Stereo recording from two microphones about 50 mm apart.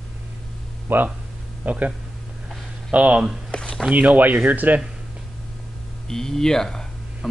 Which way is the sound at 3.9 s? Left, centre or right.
Right.